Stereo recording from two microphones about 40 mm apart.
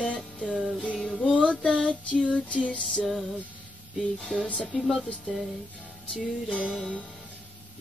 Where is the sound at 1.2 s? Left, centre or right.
Left.